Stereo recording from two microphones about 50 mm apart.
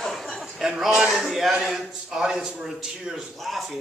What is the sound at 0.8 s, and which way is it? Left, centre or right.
A man's voice, centre.